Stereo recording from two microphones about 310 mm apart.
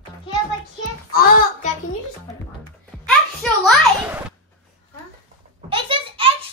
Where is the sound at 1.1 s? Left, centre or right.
Left.